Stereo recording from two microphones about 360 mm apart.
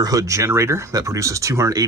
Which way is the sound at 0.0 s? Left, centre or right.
Centre.